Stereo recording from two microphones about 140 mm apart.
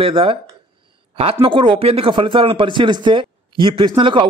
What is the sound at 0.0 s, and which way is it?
Speech, 40° right (ahead or behind).